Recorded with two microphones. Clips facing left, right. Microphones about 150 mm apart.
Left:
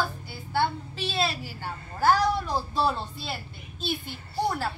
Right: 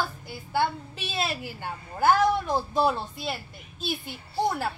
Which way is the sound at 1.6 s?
15° right (ahead or behind).